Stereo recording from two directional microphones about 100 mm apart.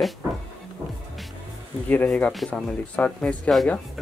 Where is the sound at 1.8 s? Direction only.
15° left (ahead or behind).